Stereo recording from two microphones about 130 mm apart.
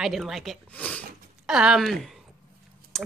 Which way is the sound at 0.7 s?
10° left (ahead or behind).